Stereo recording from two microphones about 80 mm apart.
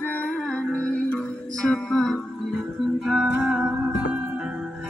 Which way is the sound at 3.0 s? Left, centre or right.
Centre.